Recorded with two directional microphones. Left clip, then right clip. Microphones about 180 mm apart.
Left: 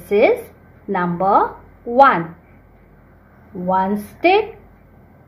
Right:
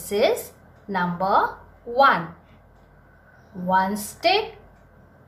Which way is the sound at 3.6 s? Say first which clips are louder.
Left 3 dB; 35° left (ahead or behind).